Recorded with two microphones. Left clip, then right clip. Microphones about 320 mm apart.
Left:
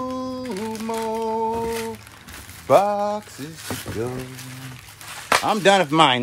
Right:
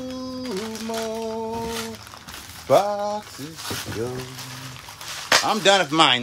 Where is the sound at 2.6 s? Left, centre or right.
Left.